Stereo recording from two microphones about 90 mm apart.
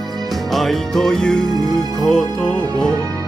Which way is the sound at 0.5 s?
5° left (ahead or behind).